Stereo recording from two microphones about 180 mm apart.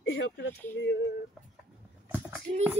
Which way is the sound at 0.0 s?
75° left (ahead or behind).